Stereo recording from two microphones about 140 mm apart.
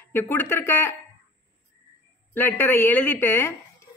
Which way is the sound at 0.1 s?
15° left (ahead or behind).